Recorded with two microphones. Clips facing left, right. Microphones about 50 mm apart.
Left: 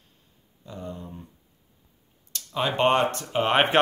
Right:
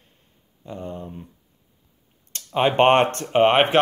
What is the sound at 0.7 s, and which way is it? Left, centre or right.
Speech, right.